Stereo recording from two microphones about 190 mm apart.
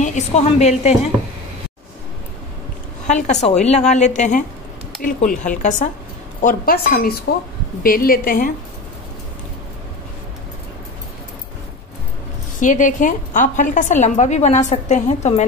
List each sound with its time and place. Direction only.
0.0 s a woman's voice: 40° left (ahead or behind)
3.1 s a woman's voice: 40° left (ahead or behind)
12.5 s a woman's voice: 40° left (ahead or behind)